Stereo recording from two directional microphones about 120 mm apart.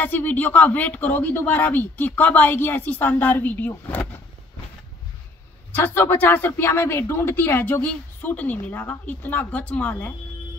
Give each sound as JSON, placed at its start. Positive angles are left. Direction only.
{"t": 0.0, "sound": "speech", "side_deg": 15}
{"t": 5.7, "sound": "speech", "side_deg": 15}